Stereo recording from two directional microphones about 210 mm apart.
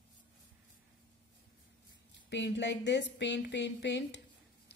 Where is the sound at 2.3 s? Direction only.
55° left (ahead or behind).